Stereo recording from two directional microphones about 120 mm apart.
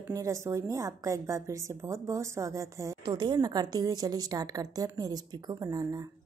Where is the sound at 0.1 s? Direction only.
25° right (ahead or behind).